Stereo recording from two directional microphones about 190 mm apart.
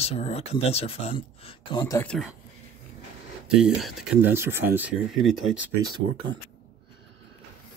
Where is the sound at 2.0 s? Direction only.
5° left (ahead or behind).